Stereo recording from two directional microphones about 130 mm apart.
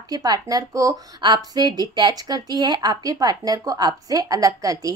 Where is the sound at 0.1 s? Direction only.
30° right (ahead or behind).